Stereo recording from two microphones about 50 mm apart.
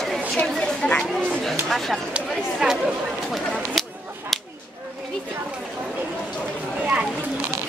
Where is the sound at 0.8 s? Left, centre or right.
Left.